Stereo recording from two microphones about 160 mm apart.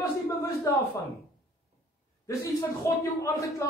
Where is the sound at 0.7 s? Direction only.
20° left (ahead or behind).